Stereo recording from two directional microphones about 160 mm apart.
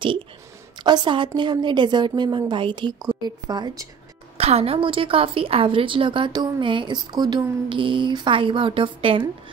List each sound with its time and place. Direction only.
0.8 s a woman's voice: 30° right (ahead or behind)
4.4 s a woman's voice: 40° right (ahead or behind)